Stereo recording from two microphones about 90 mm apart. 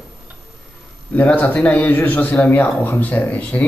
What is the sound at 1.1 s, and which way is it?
Speech, 20° left (ahead or behind).